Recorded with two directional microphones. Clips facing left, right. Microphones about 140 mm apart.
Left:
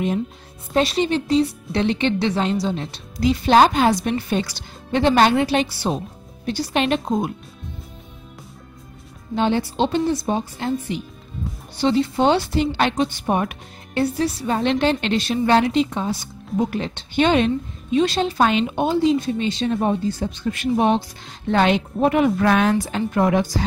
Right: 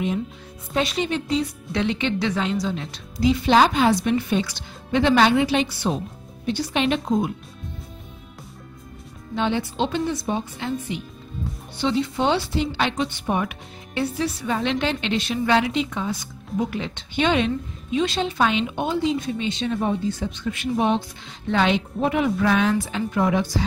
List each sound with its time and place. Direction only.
0.7 s speech: 35° left (ahead or behind)
3.2 s a woman's voice: 45° left (ahead or behind)
9.3 s speech: 35° left (ahead or behind)
20.7 s a woman's voice: 50° left (ahead or behind)